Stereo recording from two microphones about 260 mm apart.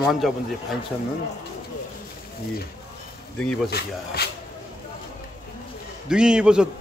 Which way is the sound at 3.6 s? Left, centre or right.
Left.